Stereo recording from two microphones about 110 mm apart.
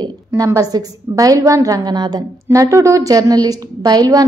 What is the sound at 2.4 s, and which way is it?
A woman's voice, 25° right (ahead or behind).